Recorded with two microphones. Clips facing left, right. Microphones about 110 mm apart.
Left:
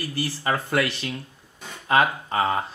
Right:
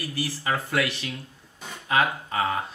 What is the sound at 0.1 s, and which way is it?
Speech, 35° left (ahead or behind).